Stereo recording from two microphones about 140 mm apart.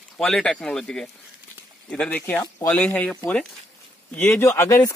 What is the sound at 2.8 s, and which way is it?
Speech, 10° left (ahead or behind).